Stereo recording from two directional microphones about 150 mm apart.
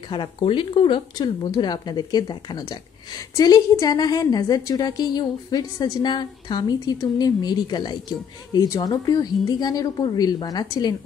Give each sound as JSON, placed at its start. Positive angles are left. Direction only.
{"t": 0.1, "sound": "speech", "side_deg": 35}